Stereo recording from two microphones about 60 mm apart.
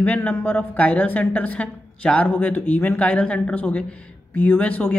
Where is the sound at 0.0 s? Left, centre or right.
Left.